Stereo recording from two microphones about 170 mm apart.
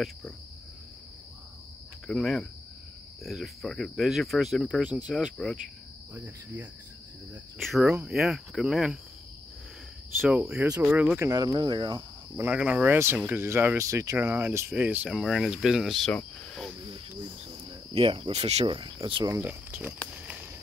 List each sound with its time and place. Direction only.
2.0 s speech: centre (ahead or behind)
6.1 s speech: 10° right (ahead or behind)
10.2 s speech: 5° right (ahead or behind)
11.2 s speech: 20° right (ahead or behind)
12.4 s speech: 10° right (ahead or behind)
17.2 s speech: 30° right (ahead or behind)
19.3 s speech: 10° right (ahead or behind)